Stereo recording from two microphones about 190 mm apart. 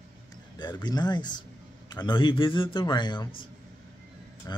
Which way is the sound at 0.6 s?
25° left (ahead or behind).